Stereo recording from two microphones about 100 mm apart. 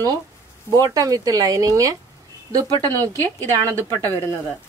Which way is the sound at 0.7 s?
40° right (ahead or behind).